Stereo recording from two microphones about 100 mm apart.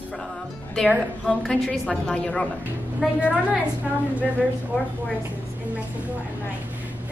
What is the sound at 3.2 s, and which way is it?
Speech, 10° right (ahead or behind).